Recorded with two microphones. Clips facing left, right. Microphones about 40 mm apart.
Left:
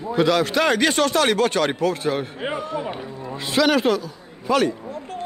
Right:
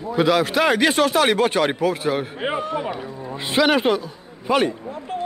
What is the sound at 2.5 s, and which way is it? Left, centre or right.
Speech, centre.